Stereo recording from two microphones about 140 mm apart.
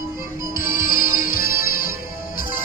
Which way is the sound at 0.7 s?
90° left.